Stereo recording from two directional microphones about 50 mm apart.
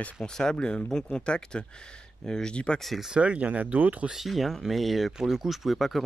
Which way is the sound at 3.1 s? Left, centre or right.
Right.